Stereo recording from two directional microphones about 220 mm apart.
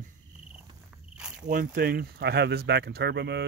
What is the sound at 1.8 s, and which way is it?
Speech, 45° right (ahead or behind).